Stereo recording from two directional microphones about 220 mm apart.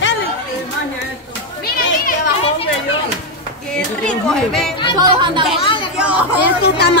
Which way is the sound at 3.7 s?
5° left (ahead or behind).